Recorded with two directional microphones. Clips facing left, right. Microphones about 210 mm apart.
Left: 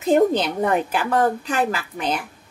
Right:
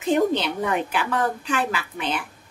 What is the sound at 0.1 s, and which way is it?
A woman's voice, 40° left (ahead or behind).